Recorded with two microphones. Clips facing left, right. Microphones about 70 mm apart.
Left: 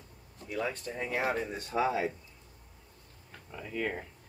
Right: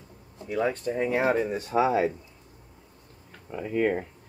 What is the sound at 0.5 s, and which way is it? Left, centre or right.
Speech, right.